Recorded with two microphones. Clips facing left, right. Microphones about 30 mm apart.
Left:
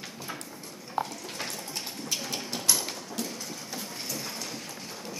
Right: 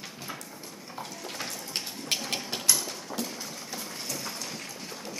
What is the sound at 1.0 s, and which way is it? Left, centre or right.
Bathtub, left.